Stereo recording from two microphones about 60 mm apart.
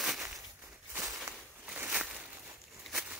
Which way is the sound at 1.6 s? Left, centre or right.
Right.